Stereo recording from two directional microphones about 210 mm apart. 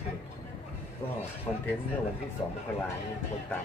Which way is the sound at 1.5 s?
25° left (ahead or behind).